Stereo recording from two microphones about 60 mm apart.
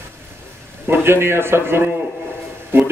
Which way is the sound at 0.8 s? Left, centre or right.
Right.